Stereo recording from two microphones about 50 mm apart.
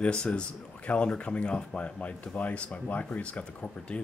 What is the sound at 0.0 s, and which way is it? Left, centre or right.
Speech, centre.